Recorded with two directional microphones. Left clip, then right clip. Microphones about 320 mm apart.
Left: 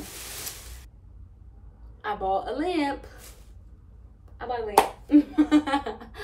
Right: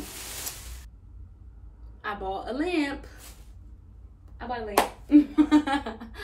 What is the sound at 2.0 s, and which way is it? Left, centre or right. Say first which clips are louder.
A woman's voice: left 5 dB; centre.